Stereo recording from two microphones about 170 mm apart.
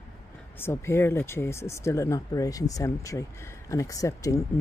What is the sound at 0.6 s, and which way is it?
Speech, 15° left (ahead or behind).